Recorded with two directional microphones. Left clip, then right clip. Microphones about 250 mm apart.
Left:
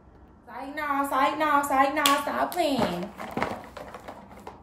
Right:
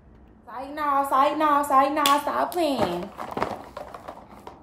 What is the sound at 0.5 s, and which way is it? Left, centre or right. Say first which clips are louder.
Speech: right 5 dB; centre.